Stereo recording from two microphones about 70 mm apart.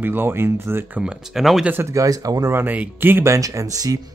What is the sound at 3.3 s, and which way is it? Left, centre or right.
Speech, right.